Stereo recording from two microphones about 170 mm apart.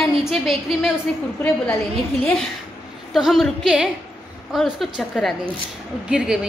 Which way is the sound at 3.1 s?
Centre (ahead or behind).